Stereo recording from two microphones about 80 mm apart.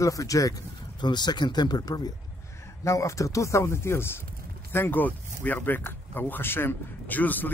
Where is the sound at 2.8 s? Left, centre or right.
Left.